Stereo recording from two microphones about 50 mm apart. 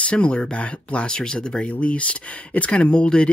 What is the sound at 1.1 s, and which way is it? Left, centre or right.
Speech, centre.